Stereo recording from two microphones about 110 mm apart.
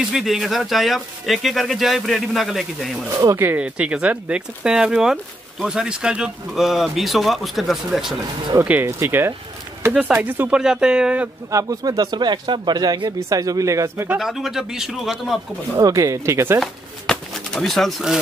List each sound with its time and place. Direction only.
0.1 s speech: centre (ahead or behind)
3.1 s speech: 35° right (ahead or behind)
3.3 s speech: 15° right (ahead or behind)
8.8 s speech: 25° right (ahead or behind)
10.6 s speech: 5° right (ahead or behind)
11.5 s speech: 35° right (ahead or behind)
14.0 s speech: 5° right (ahead or behind)
15.8 s speech: 30° right (ahead or behind)
16.5 s pigeon: centre (ahead or behind)